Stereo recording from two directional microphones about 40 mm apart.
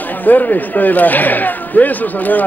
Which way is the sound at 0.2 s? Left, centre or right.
Left.